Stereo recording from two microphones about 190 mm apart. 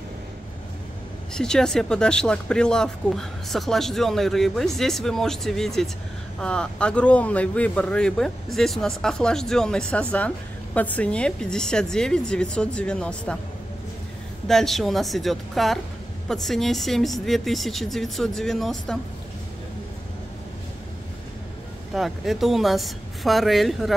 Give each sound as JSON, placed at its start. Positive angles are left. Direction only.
{"t": 1.3, "sound": "speech", "side_deg": 5}
{"t": 14.5, "sound": "speech", "side_deg": 0}
{"t": 21.9, "sound": "speech", "side_deg": 0}